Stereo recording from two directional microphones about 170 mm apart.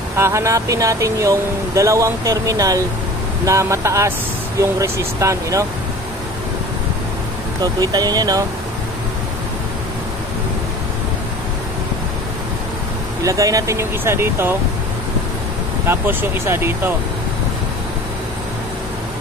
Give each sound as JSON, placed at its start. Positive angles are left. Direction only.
{"t": 0.2, "sound": "speech", "side_deg": -15}
{"t": 7.6, "sound": "speech", "side_deg": -20}
{"t": 13.2, "sound": "speech", "side_deg": -20}
{"t": 15.9, "sound": "speech", "side_deg": -15}